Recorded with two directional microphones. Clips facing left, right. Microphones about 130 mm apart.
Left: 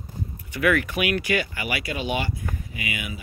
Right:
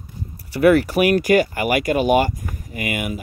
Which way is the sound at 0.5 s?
35° right (ahead or behind).